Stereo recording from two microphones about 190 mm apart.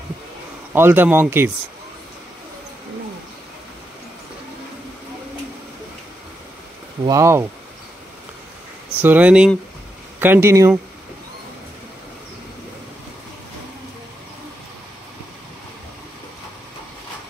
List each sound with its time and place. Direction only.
0.7 s speech: 10° right (ahead or behind)
7.1 s speech: 15° right (ahead or behind)
9.0 s speech: 10° right (ahead or behind)